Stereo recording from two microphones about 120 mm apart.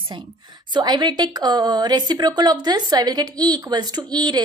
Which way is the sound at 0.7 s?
35° right (ahead or behind).